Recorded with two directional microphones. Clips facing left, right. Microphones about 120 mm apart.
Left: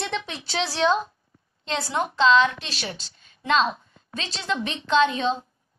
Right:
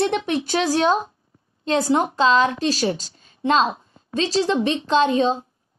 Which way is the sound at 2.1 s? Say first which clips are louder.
Right 1 dB; 40° right (ahead or behind).